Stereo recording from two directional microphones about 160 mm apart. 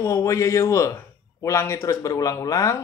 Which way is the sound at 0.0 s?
20° left (ahead or behind).